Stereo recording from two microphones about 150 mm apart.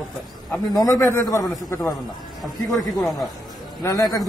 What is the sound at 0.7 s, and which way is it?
A man's voice, 20° left (ahead or behind).